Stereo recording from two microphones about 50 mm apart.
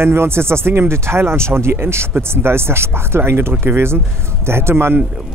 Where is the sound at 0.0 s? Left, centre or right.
Right.